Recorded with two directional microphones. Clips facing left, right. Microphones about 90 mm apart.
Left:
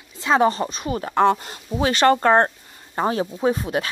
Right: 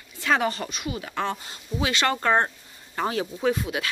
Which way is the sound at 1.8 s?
40° left (ahead or behind).